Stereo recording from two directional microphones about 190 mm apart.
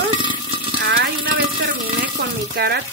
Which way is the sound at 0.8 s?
55° right (ahead or behind).